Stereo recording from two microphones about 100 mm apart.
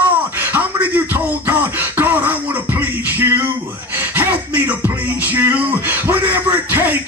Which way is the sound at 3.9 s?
20° right (ahead or behind).